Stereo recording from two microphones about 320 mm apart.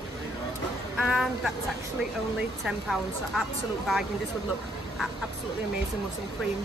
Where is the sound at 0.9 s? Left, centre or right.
Centre.